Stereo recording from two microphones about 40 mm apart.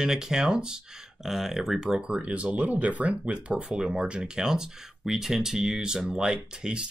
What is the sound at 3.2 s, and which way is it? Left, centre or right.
Speech, right.